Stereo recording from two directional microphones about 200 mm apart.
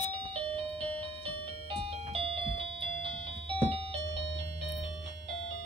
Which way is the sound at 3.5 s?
30° right (ahead or behind).